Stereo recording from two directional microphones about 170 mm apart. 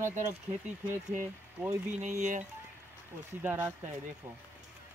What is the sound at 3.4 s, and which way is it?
Speech, 10° right (ahead or behind).